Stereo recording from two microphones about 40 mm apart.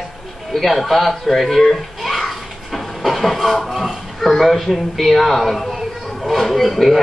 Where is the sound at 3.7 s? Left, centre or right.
Centre.